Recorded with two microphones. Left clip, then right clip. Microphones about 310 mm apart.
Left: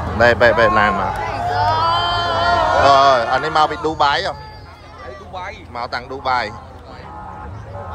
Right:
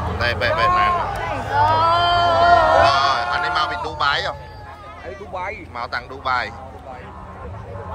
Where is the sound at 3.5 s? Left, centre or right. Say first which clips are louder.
Left 5 dB; left.